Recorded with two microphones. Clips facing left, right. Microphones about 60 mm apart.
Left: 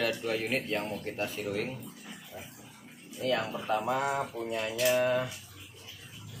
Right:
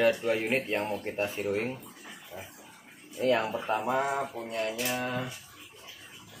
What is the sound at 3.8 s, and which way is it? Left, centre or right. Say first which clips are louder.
Speech: right 2 dB; centre.